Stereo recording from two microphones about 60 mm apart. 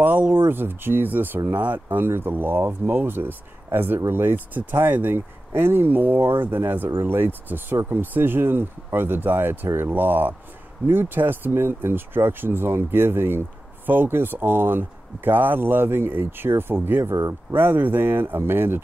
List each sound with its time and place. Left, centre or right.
0.0 s speech: right
17.0 s speech: right
17.6 s speech: right